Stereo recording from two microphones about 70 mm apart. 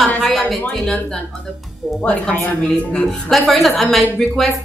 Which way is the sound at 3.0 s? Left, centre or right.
Centre.